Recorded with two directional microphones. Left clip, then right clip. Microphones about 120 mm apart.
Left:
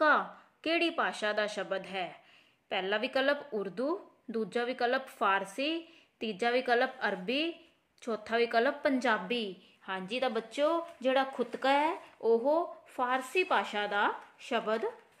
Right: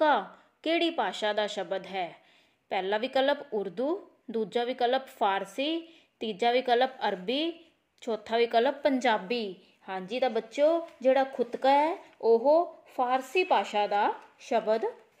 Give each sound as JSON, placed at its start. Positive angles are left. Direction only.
{"t": 0.0, "sound": "a woman's voice", "side_deg": -15}